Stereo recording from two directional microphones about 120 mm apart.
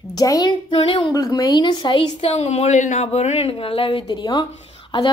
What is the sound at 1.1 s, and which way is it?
Speech, 30° left (ahead or behind).